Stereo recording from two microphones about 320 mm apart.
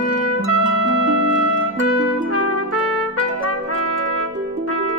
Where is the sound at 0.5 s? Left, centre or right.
Right.